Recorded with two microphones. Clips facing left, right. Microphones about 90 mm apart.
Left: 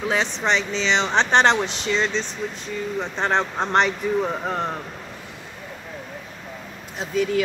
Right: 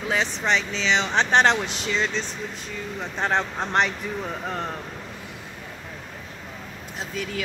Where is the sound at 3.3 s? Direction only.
20° left (ahead or behind).